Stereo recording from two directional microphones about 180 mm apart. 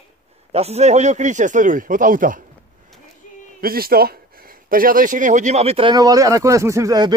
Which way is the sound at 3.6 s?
55° right (ahead or behind).